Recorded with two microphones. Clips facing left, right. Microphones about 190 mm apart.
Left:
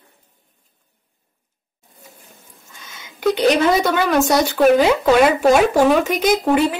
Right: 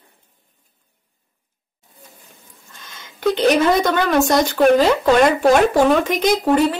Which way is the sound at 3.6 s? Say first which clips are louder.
Even; 5° left (ahead or behind).